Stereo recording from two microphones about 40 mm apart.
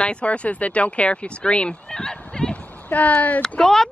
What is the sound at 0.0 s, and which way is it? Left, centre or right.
Speech, left.